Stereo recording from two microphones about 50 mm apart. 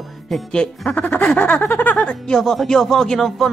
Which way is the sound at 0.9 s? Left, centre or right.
Left.